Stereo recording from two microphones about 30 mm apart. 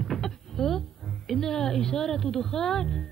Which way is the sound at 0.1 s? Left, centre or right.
Centre.